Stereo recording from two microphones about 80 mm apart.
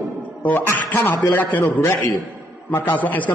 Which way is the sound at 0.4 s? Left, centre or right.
Left.